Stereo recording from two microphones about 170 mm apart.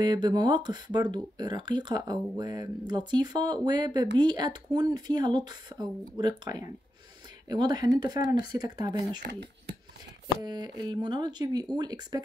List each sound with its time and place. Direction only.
0.0 s speech: 25° right (ahead or behind)
10.2 s speech: 25° right (ahead or behind)